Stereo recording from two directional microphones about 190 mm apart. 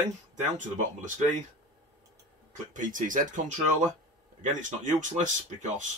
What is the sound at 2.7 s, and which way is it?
Speech, 45° right (ahead or behind).